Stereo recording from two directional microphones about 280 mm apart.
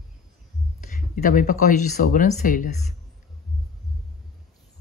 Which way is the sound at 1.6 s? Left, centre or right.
Left.